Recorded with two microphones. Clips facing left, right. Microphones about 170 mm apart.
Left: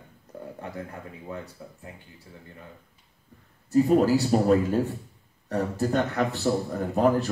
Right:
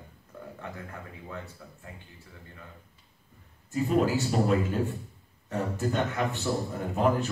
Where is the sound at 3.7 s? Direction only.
40° left (ahead or behind).